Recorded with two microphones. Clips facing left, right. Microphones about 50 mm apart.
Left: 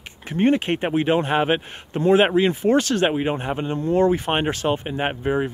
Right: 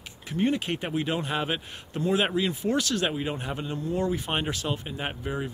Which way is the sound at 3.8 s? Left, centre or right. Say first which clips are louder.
Left 10 dB; left.